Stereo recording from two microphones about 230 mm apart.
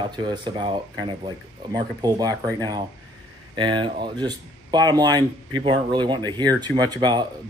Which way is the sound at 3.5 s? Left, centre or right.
Centre.